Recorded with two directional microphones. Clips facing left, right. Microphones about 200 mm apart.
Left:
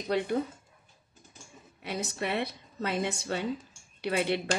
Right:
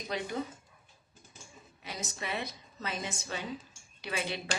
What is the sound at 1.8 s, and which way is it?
A woman's voice, 65° left (ahead or behind).